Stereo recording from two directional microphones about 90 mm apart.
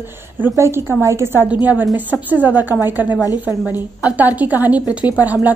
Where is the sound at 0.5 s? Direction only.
30° right (ahead or behind).